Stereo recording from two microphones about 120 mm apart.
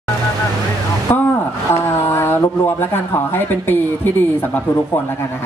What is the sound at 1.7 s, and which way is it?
Speech, 20° left (ahead or behind).